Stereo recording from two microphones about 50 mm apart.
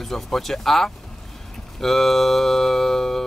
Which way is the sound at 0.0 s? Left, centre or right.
Centre.